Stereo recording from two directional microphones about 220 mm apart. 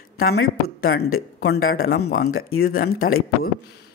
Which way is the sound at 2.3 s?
70° left (ahead or behind).